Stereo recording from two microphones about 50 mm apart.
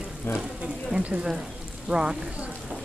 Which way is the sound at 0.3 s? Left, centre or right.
Left.